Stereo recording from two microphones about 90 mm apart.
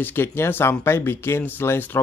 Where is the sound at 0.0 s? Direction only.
25° left (ahead or behind).